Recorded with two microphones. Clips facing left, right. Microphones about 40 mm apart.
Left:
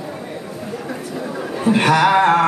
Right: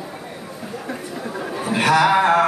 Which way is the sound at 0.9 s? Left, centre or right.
Centre.